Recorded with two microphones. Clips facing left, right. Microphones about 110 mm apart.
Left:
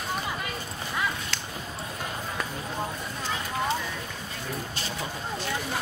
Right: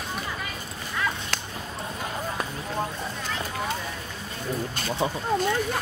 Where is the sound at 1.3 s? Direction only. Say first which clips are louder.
Right 3 dB; 45° right (ahead or behind).